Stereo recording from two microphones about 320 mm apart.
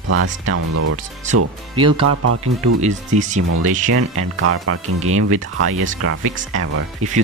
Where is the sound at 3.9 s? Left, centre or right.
Right.